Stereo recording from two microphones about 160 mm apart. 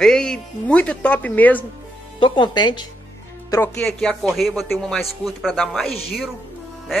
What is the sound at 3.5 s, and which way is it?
Speech, 10° left (ahead or behind).